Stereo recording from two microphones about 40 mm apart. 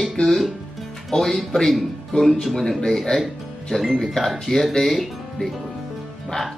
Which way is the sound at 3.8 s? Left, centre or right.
Centre.